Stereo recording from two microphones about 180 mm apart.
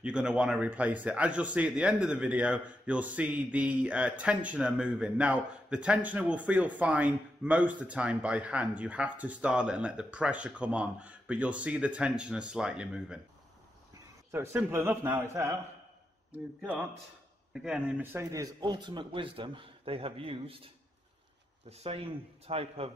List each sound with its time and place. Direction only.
0.0 s a man's voice: 5° right (ahead or behind)
14.3 s a man's voice: 15° right (ahead or behind)
17.6 s speech: 5° right (ahead or behind); by 22.8 s 35° right (ahead or behind)